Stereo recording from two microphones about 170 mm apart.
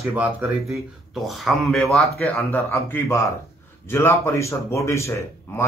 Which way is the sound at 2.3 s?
15° left (ahead or behind).